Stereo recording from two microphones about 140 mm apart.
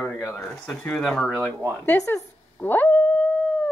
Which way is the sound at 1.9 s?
20° left (ahead or behind).